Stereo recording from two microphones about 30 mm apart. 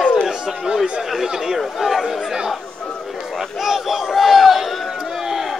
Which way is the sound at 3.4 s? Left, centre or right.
Centre.